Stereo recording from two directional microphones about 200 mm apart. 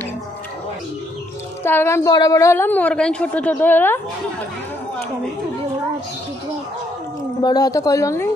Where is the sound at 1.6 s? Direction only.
10° left (ahead or behind).